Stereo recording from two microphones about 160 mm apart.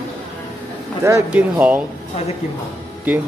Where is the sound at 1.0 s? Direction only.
20° right (ahead or behind).